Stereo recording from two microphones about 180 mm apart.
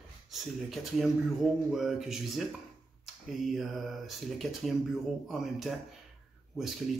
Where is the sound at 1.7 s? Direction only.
Centre (ahead or behind).